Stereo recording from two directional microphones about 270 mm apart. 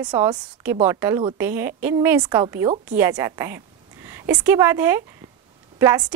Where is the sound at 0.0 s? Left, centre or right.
Centre.